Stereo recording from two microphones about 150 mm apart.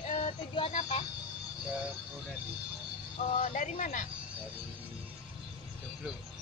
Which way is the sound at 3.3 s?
60° left (ahead or behind).